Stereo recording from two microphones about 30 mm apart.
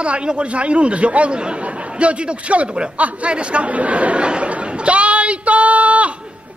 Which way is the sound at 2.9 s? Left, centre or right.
Right.